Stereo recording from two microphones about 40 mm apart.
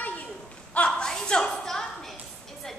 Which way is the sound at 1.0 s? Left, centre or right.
Centre.